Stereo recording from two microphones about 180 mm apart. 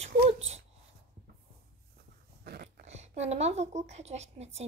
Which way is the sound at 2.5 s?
60° right (ahead or behind).